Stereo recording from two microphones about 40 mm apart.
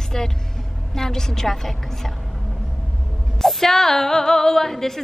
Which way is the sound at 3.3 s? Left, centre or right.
Centre.